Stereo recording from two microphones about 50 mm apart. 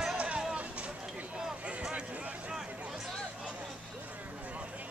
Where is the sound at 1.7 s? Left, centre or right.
Right.